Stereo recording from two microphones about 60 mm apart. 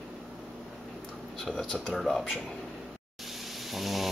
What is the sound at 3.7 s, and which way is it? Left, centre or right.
Speech, centre.